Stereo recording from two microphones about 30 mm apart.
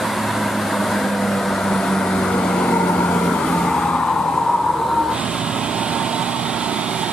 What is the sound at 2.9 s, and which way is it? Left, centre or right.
Vehicle, left.